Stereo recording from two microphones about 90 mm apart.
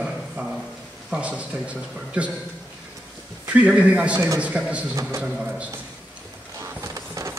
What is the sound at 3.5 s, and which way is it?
A man's voice, 15° right (ahead or behind).